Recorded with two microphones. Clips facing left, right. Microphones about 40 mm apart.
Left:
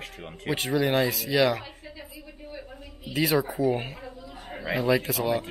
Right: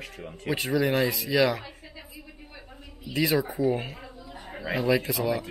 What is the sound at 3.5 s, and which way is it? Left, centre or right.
Speech, left.